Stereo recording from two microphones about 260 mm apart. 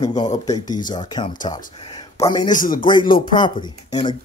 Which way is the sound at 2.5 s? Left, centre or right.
Left.